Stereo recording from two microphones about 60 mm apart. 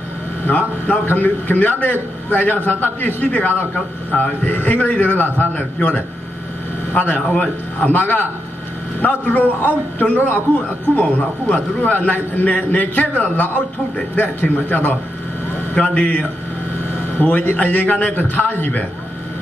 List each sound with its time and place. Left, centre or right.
0.5 s a man's voice: left